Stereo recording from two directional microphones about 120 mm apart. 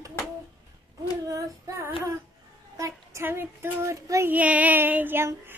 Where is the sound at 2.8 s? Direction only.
25° right (ahead or behind).